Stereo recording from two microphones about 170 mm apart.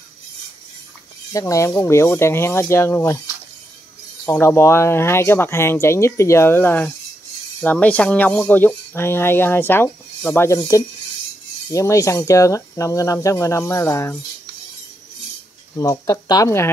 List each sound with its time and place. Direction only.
1.3 s speech: 20° left (ahead or behind)
4.3 s speech: 15° left (ahead or behind)
15.7 s speech: 20° left (ahead or behind)